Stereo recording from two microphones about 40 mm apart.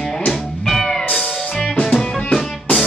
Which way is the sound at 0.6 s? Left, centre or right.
Centre.